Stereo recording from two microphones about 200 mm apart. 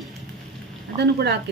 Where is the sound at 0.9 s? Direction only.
55° right (ahead or behind).